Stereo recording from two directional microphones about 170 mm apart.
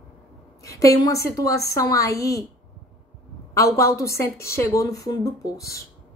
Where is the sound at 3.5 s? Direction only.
15° left (ahead or behind).